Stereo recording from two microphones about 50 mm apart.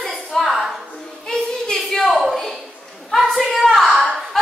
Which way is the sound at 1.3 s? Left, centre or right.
Centre.